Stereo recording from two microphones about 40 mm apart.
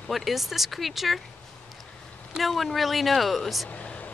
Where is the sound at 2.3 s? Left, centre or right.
Centre.